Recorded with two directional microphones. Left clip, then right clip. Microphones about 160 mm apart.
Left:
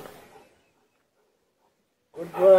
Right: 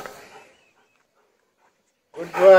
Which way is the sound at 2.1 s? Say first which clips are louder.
Right 5 dB; 10° right (ahead or behind).